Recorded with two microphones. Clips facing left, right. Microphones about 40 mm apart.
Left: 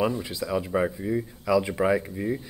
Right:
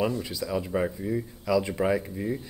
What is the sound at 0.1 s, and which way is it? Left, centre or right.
Speech, left.